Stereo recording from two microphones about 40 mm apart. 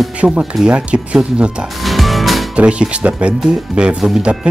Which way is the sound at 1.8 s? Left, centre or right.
Centre.